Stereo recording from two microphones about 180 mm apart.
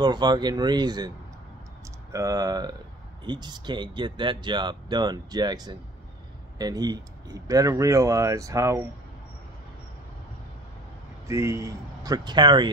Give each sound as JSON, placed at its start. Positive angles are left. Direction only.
{"t": 0.0, "sound": "speech", "side_deg": -25}
{"t": 2.1, "sound": "speech", "side_deg": -20}
{"t": 11.2, "sound": "speech", "side_deg": -15}